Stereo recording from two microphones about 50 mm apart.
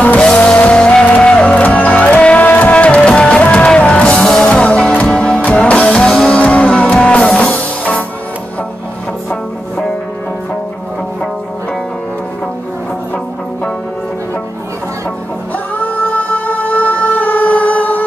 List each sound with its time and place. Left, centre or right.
0.0 s music: left
6.4 s music: left
15.8 s music: left